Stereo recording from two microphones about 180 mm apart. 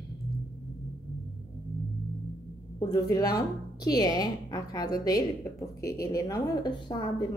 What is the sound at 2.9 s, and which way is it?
A woman's voice, 20° left (ahead or behind).